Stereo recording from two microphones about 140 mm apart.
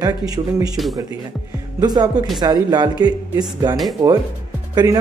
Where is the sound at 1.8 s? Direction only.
30° right (ahead or behind).